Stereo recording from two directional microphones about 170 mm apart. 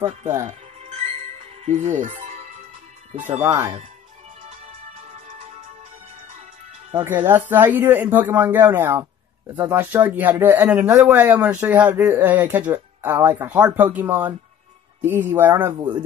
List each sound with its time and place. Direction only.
0.5 s music: 35° right (ahead or behind)
3.4 s speech: 10° right (ahead or behind)
4.4 s music: 35° right (ahead or behind)
6.9 s speech: 10° right (ahead or behind)